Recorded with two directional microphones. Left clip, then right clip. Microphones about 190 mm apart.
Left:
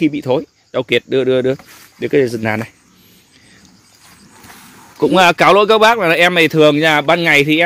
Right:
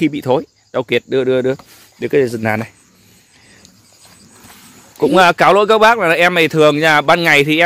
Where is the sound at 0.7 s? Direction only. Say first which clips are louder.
Left 1 dB; 5° right (ahead or behind).